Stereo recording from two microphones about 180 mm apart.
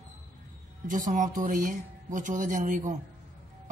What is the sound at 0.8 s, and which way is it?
A man's voice, 45° right (ahead or behind).